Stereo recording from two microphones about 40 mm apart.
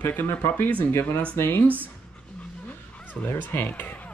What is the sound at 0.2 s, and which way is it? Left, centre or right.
Speech, left.